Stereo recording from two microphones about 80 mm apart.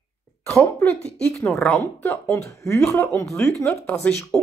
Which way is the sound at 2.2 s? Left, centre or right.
Left.